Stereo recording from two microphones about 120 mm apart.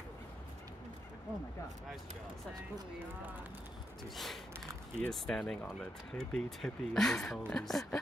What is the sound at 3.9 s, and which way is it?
Snort, centre (ahead or behind).